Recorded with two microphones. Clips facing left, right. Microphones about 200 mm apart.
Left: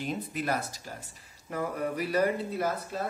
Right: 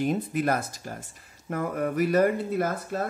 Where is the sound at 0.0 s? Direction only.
50° right (ahead or behind).